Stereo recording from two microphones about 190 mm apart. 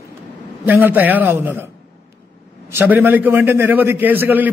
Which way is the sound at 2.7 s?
10° right (ahead or behind).